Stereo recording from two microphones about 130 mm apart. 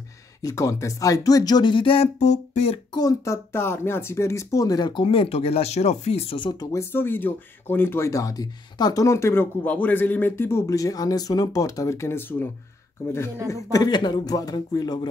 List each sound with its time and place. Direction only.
0.4 s speech: 25° left (ahead or behind)
2.1 s a sound: 60° left (ahead or behind)
2.9 s speech: 30° left (ahead or behind)
13.7 s a man's voice: 30° left (ahead or behind)